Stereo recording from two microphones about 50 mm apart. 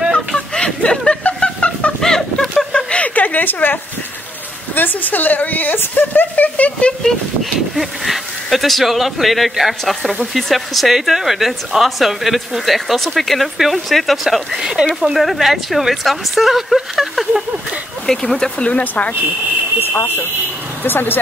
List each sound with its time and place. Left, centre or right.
0.6 s a sound: centre
2.0 s a sound: centre
2.9 s a sound: left
4.7 s speech: left
7.7 s speech: centre
15.1 s speech: centre
18.0 s speech: centre
18.6 s speech: left
19.8 s speech: left